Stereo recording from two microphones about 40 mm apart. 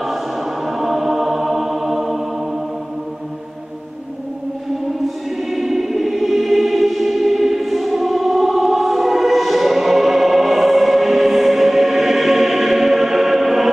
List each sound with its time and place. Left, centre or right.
0.0 s choir: centre
4.9 s choir: centre